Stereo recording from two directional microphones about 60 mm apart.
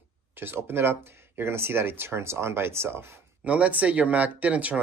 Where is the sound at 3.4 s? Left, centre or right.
Right.